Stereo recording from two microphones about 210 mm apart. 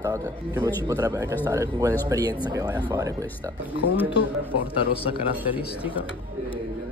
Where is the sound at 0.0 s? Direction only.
15° right (ahead or behind).